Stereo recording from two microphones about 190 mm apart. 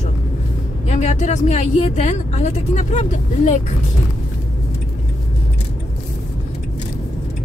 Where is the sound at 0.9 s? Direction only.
35° left (ahead or behind).